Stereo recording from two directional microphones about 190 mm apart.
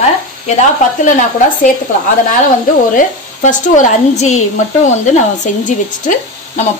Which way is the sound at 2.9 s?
40° left (ahead or behind).